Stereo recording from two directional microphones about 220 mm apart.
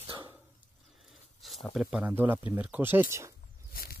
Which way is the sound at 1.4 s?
Centre (ahead or behind).